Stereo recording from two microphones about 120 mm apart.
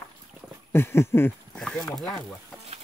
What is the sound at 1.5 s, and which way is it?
Speech, 5° left (ahead or behind).